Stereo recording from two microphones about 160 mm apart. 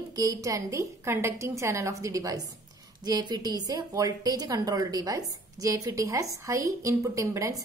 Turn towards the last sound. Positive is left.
turn(degrees=-20)  # may be behind; listen again after turning